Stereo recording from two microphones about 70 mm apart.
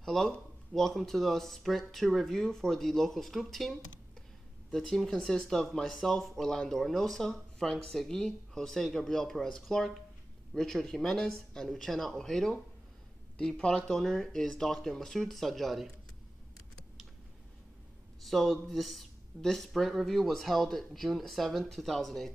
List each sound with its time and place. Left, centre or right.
0.0 s a sound: centre
0.3 s speech: centre
4.7 s speech: centre
18.2 s speech: centre